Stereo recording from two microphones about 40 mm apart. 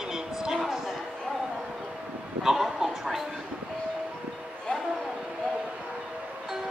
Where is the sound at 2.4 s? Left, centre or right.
Centre.